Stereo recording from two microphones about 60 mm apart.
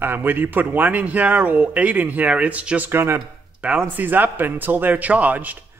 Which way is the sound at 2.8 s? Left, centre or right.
Right.